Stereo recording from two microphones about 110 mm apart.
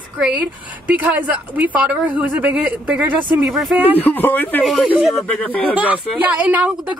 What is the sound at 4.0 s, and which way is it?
Speech, 15° left (ahead or behind).